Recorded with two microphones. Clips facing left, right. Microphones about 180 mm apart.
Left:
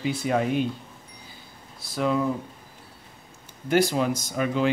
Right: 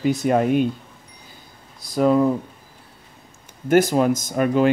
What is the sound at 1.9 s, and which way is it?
Speech, 45° right (ahead or behind).